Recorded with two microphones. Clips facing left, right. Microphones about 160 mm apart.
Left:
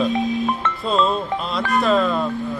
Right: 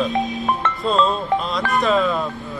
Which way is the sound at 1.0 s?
Centre (ahead or behind).